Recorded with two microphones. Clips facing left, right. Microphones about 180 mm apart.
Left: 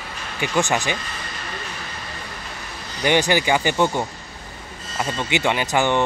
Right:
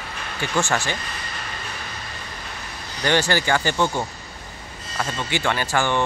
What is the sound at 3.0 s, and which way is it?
Speech, 15° left (ahead or behind).